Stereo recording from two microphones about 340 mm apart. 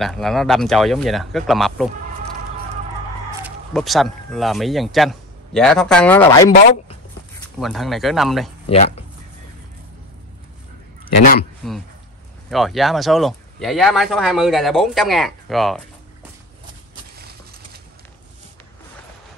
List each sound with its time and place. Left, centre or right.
0.0 s speech: centre
3.3 s speech: centre
7.5 s speech: centre
8.6 s speech: centre
12.4 s speech: centre